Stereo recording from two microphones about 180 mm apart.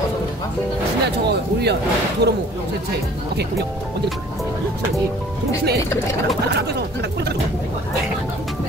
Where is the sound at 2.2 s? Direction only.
65° right (ahead or behind).